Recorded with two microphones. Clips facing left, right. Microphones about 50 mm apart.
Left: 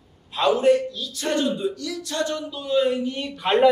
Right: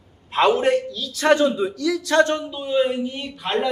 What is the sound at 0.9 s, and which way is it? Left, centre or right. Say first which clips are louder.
A woman's voice: right 7 dB; right.